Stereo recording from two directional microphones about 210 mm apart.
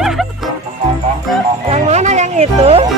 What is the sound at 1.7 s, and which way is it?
Speech, 30° right (ahead or behind).